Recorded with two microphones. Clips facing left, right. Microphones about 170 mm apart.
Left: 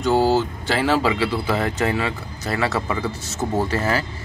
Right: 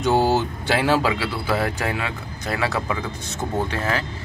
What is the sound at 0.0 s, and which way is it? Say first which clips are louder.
Vehicle: left 1 dB; 20° right (ahead or behind).